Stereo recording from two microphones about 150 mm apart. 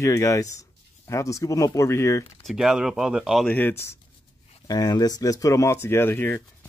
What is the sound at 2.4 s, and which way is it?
Speech, centre (ahead or behind).